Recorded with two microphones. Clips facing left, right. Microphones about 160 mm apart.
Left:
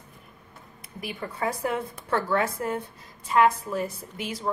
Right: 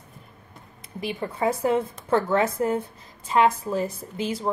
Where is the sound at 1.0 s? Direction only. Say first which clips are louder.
Right 5 dB; 25° right (ahead or behind).